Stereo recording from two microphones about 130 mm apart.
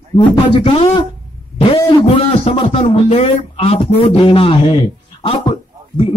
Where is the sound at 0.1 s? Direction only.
40° left (ahead or behind).